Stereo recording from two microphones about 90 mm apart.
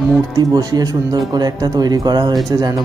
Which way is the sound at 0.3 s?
45° right (ahead or behind).